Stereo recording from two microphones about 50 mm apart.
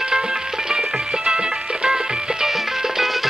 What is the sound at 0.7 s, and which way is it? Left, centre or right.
Music, centre.